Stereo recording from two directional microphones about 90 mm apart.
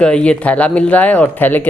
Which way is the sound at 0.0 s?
10° left (ahead or behind).